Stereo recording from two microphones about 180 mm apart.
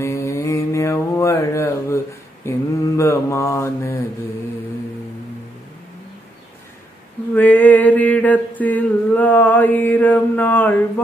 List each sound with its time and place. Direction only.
0.0 s mantra: 15° left (ahead or behind)
7.3 s mantra: 10° left (ahead or behind)